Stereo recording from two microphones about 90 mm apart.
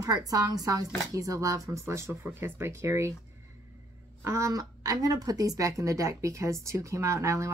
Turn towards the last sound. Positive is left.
turn(degrees=-35)  # may be behind; listen again after turning